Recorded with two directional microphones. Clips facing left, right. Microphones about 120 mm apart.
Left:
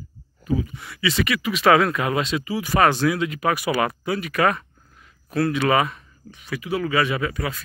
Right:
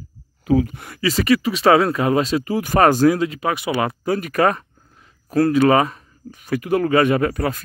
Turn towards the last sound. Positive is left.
turn(degrees=-45)  # may be behind; listen again after turning